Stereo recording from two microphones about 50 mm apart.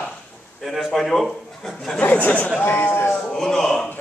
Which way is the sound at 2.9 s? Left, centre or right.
Left.